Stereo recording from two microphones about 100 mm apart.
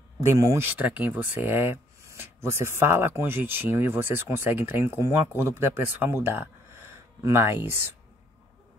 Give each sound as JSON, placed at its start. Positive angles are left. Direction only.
{"t": 0.2, "sound": "speech", "side_deg": -30}
{"t": 0.7, "sound": "speech", "side_deg": -15}